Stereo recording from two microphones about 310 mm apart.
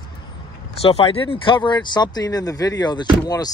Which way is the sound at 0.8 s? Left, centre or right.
Centre.